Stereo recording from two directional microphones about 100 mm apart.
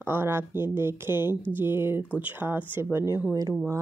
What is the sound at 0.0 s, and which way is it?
Speech, 25° right (ahead or behind).